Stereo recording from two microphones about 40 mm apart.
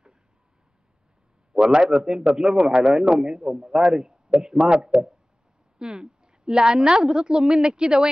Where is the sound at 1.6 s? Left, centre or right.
Right.